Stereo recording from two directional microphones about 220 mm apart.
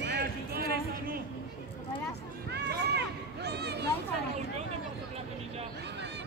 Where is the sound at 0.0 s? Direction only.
45° right (ahead or behind).